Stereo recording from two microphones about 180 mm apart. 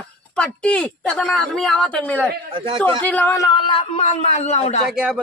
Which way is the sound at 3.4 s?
30° left (ahead or behind).